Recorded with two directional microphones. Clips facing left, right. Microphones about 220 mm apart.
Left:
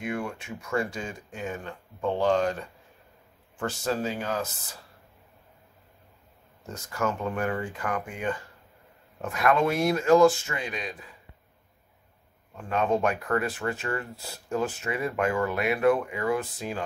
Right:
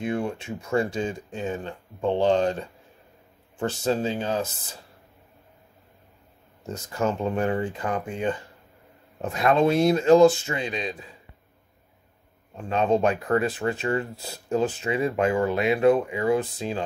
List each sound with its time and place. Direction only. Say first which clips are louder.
0.0 s speech: right 5 dB; 25° right (ahead or behind)
6.6 s speech: right 3 dB; 20° right (ahead or behind)
12.5 s speech: right 3 dB; 25° right (ahead or behind)